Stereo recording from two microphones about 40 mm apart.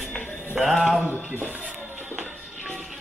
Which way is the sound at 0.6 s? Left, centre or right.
Centre.